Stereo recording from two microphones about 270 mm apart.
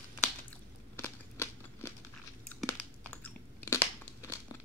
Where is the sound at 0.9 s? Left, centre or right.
Centre.